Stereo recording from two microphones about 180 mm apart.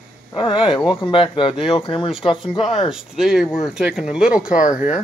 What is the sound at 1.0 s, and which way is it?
Speech, 30° left (ahead or behind).